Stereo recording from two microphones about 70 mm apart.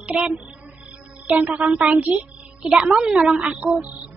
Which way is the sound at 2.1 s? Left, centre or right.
Centre.